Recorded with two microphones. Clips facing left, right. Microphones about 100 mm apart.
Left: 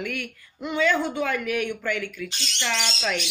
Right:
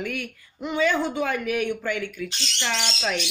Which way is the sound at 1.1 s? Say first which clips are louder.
Right 1 dB; 15° right (ahead or behind).